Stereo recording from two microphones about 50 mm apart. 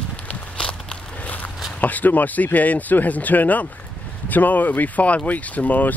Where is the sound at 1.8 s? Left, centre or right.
Left.